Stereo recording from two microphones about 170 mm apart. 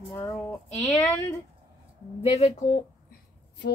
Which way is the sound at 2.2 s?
40° left (ahead or behind).